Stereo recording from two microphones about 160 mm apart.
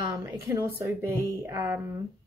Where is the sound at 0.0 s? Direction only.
20° right (ahead or behind).